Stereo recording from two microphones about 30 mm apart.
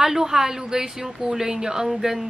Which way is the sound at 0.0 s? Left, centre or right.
Centre.